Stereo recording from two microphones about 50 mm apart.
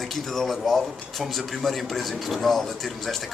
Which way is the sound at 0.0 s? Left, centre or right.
Centre.